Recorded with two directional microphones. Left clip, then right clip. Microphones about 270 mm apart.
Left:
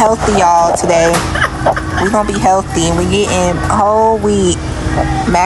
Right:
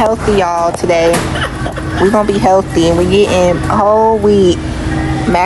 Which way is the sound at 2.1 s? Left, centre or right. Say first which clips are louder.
Right 1 dB; centre.